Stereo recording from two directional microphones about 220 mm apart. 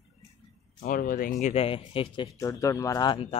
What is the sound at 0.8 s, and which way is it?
Speech, 40° left (ahead or behind).